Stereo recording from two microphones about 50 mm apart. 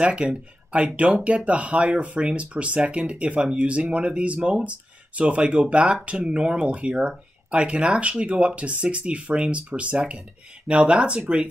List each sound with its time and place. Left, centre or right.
0.0 s speech: right